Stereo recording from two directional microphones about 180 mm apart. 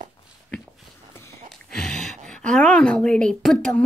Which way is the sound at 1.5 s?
5° left (ahead or behind).